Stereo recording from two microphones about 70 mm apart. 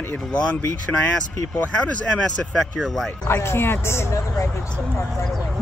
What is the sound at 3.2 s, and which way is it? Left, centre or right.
Speech, left.